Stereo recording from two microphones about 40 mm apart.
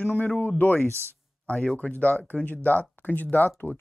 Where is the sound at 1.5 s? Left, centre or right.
Left.